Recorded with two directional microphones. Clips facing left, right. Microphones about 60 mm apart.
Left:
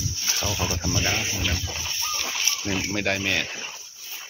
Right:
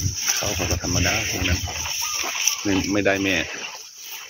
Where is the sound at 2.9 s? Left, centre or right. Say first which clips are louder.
Right 4 dB; centre.